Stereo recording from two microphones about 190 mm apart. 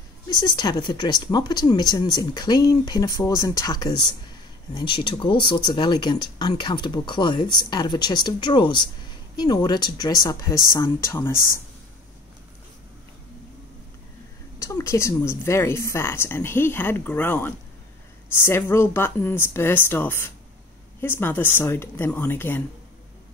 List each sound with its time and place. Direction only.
0.3 s speech: 20° left (ahead or behind)
14.6 s speech: 15° left (ahead or behind)